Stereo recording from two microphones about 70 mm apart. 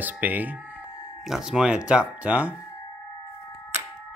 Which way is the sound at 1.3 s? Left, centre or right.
Centre.